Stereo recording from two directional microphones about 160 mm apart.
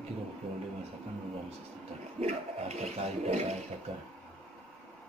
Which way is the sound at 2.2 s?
40° right (ahead or behind).